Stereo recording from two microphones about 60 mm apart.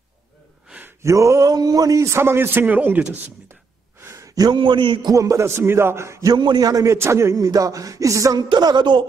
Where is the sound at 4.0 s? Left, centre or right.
Right.